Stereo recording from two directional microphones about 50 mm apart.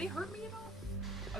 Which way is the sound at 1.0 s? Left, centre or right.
Centre.